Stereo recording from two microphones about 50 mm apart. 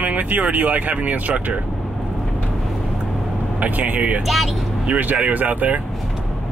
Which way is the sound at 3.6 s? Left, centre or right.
Right.